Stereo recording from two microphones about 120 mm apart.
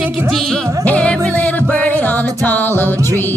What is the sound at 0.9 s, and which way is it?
Music, 10° left (ahead or behind).